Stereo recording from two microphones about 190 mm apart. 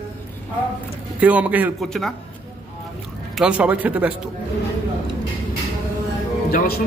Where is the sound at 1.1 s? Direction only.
5° right (ahead or behind).